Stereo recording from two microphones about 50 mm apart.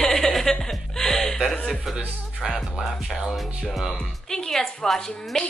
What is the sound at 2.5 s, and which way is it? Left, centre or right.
Music, centre.